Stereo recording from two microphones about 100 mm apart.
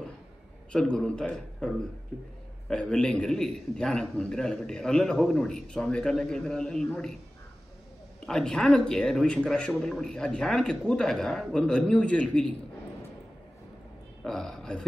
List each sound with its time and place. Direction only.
0.7 s a man's voice: 10° left (ahead or behind)
8.3 s a man's voice: 5° left (ahead or behind)
14.2 s speech: 5° left (ahead or behind)